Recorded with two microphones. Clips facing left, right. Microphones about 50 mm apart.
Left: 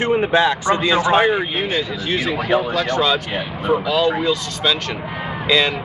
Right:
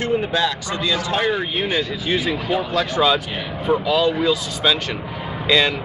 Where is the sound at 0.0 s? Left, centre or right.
Left.